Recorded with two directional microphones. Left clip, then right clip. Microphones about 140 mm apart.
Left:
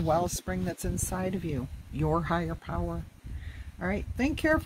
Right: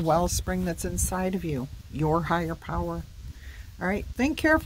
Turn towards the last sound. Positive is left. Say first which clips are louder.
# right 4 dB
turn(degrees=-25)  # may be behind; listen again after turning